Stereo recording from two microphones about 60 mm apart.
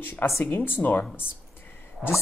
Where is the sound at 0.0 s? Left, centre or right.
Left.